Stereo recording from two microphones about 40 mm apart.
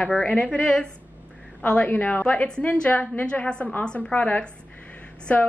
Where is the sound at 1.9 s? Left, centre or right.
Left.